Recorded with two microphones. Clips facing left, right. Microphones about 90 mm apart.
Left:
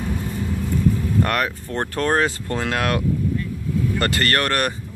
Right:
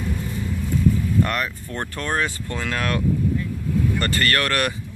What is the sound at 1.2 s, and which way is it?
Speech, 60° left (ahead or behind).